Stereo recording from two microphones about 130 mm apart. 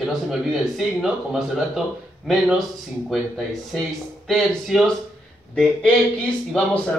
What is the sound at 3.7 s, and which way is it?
A man's voice, centre (ahead or behind).